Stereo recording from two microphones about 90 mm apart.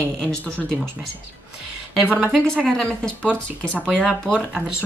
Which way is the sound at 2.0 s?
15° right (ahead or behind).